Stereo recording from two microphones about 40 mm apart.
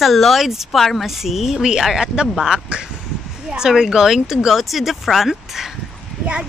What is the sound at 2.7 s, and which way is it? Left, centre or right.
Speech, right.